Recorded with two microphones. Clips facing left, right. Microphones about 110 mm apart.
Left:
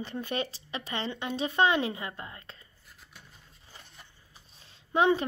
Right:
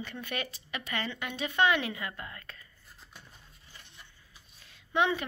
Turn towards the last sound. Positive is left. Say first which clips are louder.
# left 4 dB
turn(degrees=35)  # may be behind; listen again after turning